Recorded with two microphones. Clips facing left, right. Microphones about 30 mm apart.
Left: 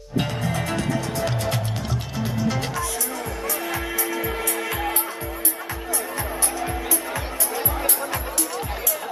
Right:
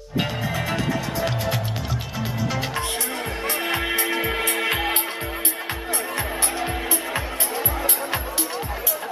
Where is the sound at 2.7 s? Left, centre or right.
Right.